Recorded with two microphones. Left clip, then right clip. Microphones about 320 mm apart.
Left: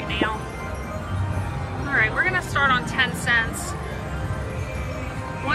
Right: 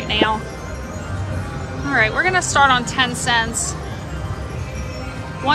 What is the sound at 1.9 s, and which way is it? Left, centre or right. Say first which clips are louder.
A woman's voice: right 4 dB; centre.